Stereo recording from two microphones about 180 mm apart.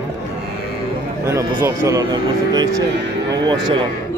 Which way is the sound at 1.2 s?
15° right (ahead or behind).